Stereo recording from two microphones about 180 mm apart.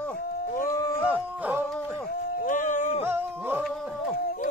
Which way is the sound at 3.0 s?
10° right (ahead or behind).